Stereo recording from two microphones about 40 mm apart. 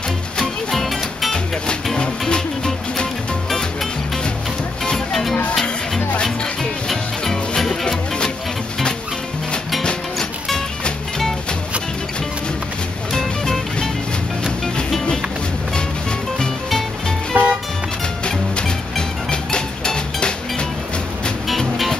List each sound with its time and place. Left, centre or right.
0.4 s music: centre
2.0 s music: centre
4.9 s music: centre
13.1 s music: centre
17.3 s music: right
18.2 s music: left
21.5 s music: centre